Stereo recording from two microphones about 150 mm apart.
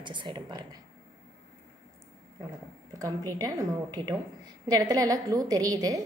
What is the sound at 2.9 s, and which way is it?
A woman's voice, 25° right (ahead or behind).